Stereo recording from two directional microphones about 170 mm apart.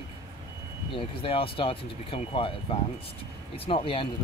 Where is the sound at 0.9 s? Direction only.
30° left (ahead or behind).